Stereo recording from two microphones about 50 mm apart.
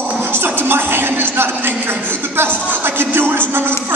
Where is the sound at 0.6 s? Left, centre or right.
Right.